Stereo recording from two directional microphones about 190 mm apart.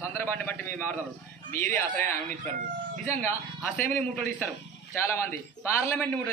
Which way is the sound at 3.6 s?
10° left (ahead or behind).